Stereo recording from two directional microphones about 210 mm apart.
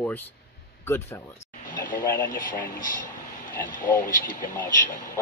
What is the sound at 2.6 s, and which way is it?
Speech, 40° left (ahead or behind).